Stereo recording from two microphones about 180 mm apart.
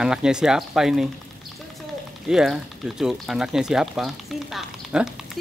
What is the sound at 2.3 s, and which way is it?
Speech, centre (ahead or behind).